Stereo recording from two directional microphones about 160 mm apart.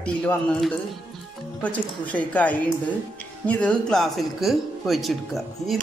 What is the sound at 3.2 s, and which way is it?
Speech, 10° left (ahead or behind).